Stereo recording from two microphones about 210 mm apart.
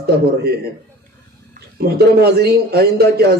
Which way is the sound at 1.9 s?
50° right (ahead or behind).